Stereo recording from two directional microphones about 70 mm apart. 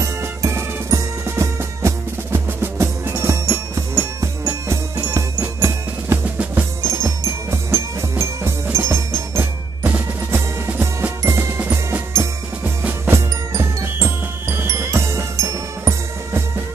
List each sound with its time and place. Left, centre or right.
0.0 s music: right
7.5 s music: right
9.8 s music: right
12.1 s drum: right
13.1 s music: right